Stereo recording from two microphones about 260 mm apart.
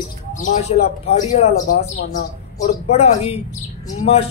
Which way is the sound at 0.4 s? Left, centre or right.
Left.